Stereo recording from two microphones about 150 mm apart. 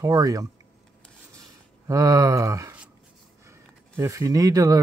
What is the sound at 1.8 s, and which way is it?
Speech, 20° right (ahead or behind).